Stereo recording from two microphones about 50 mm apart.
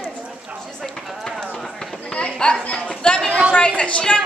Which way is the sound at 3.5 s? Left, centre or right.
Left.